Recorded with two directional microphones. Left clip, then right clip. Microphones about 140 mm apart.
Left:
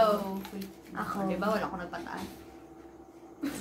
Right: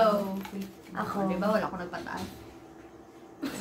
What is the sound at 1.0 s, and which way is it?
Speech, 15° right (ahead or behind).